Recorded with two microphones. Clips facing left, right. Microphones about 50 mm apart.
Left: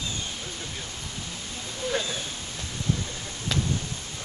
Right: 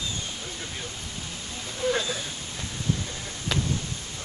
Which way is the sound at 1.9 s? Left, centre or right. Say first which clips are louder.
Right 3 dB; centre.